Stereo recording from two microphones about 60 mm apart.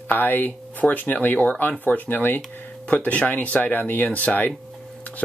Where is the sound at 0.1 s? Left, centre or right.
Left.